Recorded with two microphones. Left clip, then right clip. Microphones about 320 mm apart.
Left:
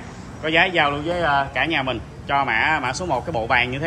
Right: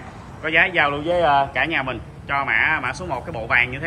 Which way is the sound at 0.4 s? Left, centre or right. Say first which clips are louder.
Even; centre.